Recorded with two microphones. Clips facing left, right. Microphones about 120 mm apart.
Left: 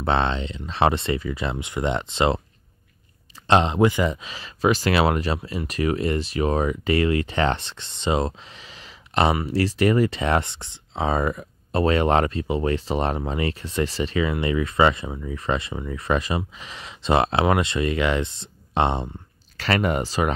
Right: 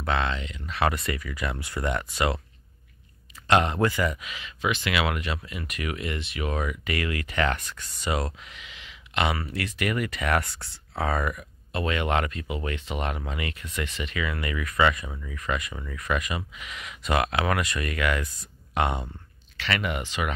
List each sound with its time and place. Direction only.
0.0 s speech: 30° left (ahead or behind)
3.4 s speech: 25° left (ahead or behind)
19.5 s speech: 40° left (ahead or behind)